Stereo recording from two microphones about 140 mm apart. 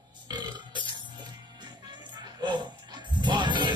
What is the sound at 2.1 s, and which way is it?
Music, 30° right (ahead or behind).